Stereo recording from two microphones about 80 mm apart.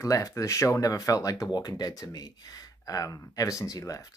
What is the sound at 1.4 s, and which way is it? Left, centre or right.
Speech, left.